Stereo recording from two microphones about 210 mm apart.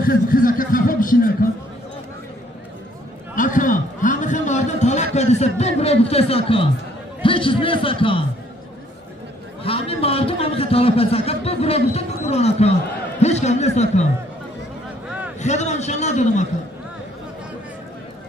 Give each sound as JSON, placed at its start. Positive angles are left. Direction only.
{"t": 0.0, "sound": "speech", "side_deg": 45}
{"t": 3.3, "sound": "a man's voice", "side_deg": 40}
{"t": 9.6, "sound": "a man's voice", "side_deg": 25}
{"t": 15.3, "sound": "a sound", "side_deg": 35}